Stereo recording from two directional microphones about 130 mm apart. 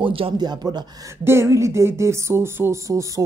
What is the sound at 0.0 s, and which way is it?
Speech, 45° right (ahead or behind).